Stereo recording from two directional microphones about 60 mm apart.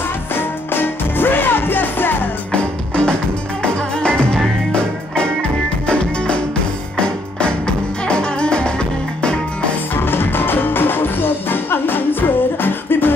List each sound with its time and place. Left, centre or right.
0.3 s music: left
2.5 s music: centre
9.9 s music: left